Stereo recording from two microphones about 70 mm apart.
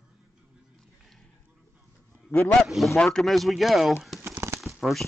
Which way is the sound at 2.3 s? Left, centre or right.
Left.